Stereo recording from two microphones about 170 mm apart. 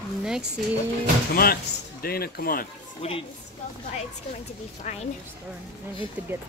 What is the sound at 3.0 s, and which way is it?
Speech, 35° left (ahead or behind).